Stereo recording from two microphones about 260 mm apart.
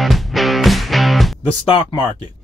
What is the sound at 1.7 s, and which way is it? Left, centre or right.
Speech, centre.